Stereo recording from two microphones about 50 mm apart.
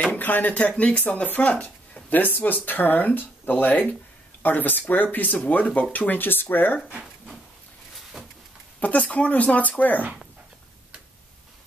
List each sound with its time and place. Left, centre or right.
0.2 s speech: left
8.7 s speech: left